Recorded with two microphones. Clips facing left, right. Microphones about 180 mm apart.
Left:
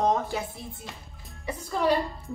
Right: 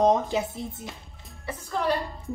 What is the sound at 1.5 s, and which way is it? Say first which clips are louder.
Speech: left 2 dB; 10° left (ahead or behind).